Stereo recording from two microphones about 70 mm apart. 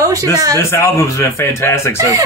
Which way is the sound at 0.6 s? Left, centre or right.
Left.